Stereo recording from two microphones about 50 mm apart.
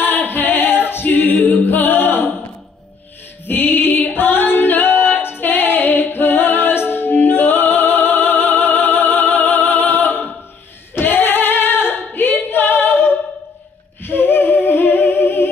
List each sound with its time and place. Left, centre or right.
0.0 s a capella: left
3.4 s female singing: left
5.4 s music: left
11.0 s singing: left
14.0 s female singing: left